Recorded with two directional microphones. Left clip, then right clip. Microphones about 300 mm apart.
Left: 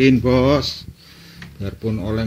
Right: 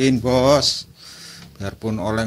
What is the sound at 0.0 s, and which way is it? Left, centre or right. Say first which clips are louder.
Speech: left 1 dB; centre.